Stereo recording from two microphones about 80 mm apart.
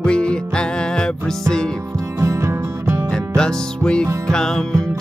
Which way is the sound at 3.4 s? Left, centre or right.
Centre.